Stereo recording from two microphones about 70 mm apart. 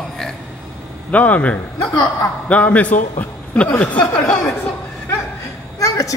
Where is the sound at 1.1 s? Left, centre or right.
Left.